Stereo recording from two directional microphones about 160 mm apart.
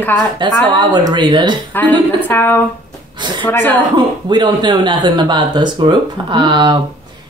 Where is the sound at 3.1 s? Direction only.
30° right (ahead or behind).